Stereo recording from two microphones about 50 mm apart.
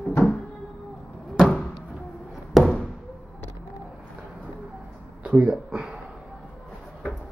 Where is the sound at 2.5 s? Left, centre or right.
Centre.